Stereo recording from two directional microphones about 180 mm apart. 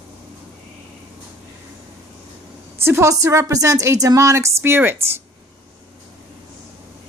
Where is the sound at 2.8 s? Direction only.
15° right (ahead or behind).